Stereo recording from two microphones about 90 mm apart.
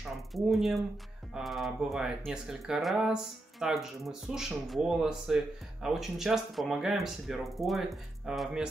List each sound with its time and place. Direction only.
0.3 s speech: centre (ahead or behind)